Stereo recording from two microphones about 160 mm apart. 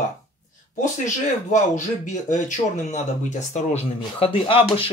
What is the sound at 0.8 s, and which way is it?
Speech, 50° left (ahead or behind).